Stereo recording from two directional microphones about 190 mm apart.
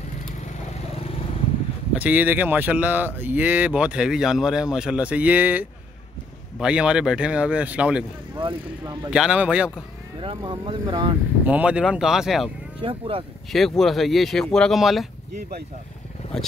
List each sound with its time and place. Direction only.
2.0 s speech: 10° right (ahead or behind)
8.4 s speech: 25° right (ahead or behind)
9.1 s speech: 5° right (ahead or behind)
10.2 s speech: 25° right (ahead or behind)
11.4 s speech: 5° right (ahead or behind)
12.8 s speech: 25° right (ahead or behind)
13.5 s speech: centre (ahead or behind)